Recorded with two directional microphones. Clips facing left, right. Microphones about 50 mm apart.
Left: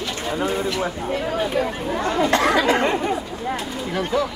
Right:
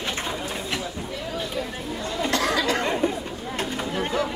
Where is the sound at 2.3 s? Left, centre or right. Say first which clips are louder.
Left 4 dB; left.